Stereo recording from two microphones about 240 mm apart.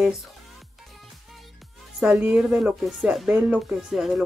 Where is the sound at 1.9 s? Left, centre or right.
Centre.